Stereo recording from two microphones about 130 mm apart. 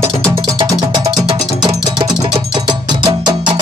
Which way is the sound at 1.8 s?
35° right (ahead or behind).